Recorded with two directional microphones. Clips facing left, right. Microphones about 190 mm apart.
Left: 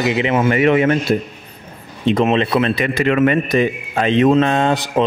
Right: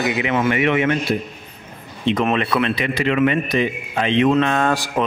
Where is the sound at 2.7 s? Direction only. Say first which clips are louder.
Left 3 dB; 50° left (ahead or behind).